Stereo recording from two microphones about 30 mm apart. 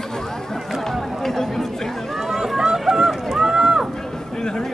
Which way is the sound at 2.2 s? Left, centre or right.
Centre.